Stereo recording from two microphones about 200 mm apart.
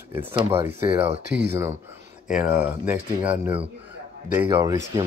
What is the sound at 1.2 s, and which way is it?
Speech, 60° right (ahead or behind).